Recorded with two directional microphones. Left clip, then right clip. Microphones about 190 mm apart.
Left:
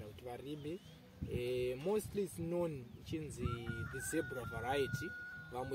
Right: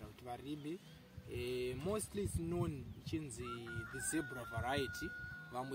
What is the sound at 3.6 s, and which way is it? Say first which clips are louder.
Speech: left 1 dB; 15° left (ahead or behind).